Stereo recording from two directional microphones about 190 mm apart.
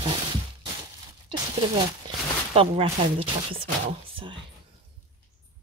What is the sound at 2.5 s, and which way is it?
Speech, 30° right (ahead or behind).